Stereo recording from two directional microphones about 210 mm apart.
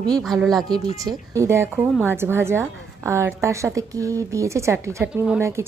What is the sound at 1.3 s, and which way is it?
A woman's voice, 15° right (ahead or behind).